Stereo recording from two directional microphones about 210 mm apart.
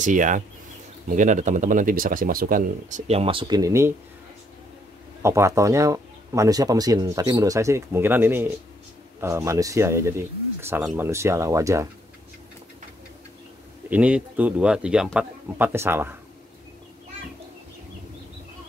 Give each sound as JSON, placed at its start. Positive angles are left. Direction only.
{"t": 0.0, "sound": "speech", "side_deg": -35}
{"t": 5.2, "sound": "speech", "side_deg": -15}
{"t": 13.8, "sound": "speech", "side_deg": -5}